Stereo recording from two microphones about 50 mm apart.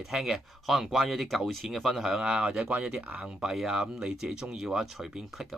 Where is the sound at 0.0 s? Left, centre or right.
Centre.